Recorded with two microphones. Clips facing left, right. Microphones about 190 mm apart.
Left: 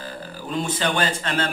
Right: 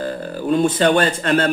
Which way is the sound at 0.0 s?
55° right (ahead or behind).